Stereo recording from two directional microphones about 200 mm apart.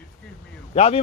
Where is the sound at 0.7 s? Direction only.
30° left (ahead or behind).